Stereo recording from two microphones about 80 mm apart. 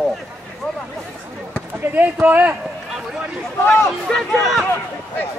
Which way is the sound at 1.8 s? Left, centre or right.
Right.